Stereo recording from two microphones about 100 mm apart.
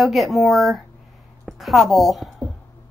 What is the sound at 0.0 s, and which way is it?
A woman's voice, centre (ahead or behind).